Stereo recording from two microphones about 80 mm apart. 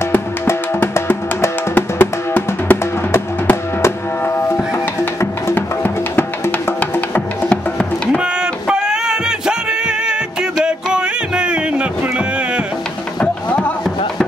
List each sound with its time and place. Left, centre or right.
0.1 s music: left
8.2 s music: centre
10.6 s a sound: centre
13.2 s music: centre